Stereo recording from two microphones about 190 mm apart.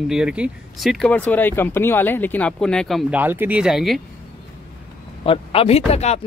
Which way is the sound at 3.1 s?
10° right (ahead or behind).